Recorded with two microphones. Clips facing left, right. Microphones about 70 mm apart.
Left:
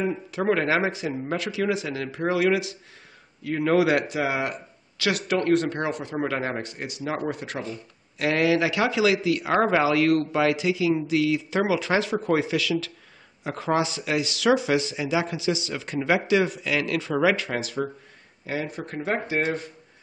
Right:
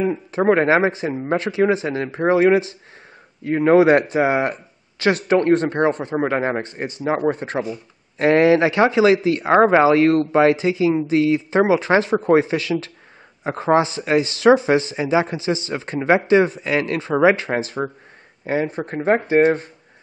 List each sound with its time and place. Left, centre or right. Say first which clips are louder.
0.1 s speech: right 7 dB; right